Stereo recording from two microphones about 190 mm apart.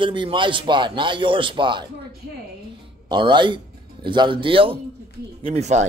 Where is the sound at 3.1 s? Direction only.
25° right (ahead or behind).